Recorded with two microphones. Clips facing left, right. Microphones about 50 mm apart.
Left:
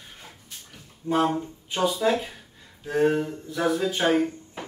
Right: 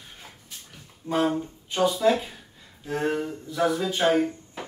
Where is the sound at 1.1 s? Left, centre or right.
Centre.